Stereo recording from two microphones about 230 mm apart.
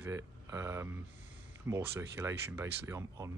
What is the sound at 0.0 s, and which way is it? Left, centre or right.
Speech, centre.